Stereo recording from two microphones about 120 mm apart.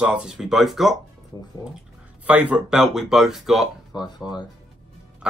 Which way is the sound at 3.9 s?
40° left (ahead or behind).